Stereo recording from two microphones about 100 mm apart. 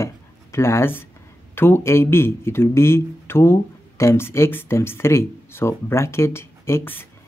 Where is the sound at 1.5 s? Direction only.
25° left (ahead or behind).